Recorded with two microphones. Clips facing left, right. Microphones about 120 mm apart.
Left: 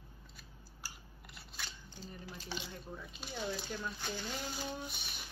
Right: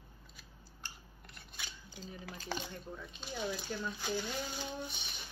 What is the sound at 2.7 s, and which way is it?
Speech, 5° left (ahead or behind).